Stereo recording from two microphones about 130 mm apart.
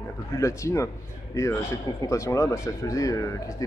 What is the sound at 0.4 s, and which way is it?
Speech, 25° left (ahead or behind).